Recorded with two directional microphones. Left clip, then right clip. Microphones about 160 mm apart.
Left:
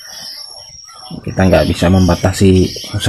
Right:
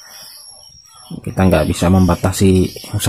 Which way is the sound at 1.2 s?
30° right (ahead or behind).